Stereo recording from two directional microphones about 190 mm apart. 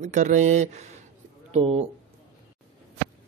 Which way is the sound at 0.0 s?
40° right (ahead or behind).